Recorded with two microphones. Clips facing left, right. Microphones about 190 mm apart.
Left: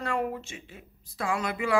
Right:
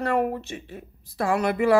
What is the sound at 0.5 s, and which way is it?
Speech, 40° right (ahead or behind).